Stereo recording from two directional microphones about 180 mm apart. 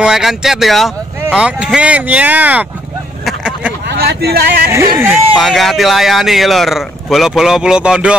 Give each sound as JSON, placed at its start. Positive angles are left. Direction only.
{"t": 0.0, "sound": "speech", "side_deg": 0}
{"t": 3.3, "sound": "vehicle", "side_deg": -5}
{"t": 4.0, "sound": "speech", "side_deg": -65}
{"t": 4.9, "sound": "speech", "side_deg": 0}